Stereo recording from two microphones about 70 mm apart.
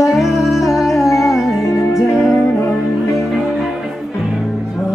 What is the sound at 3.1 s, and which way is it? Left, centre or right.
Music, centre.